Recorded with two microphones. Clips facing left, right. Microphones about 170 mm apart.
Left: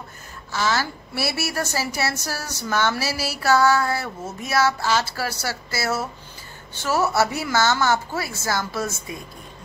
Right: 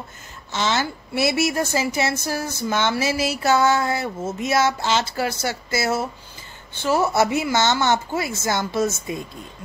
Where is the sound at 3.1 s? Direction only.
35° left (ahead or behind).